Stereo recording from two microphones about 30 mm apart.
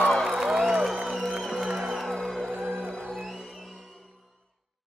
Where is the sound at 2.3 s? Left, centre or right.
Centre.